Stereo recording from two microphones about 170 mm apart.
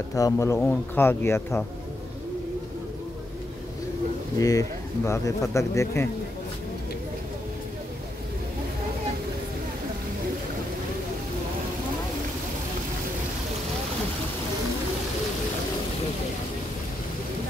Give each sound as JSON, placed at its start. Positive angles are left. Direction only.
{"t": 0.1, "sound": "speech", "side_deg": 20}
{"t": 4.4, "sound": "speech", "side_deg": 20}